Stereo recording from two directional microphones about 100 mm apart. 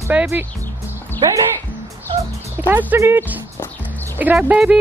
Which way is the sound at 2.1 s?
50° right (ahead or behind).